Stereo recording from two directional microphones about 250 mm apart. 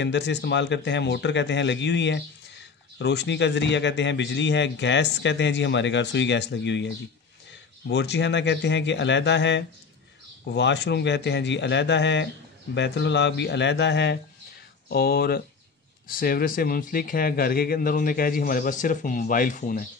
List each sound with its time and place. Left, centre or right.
0.0 s a man's voice: left
7.9 s a man's voice: left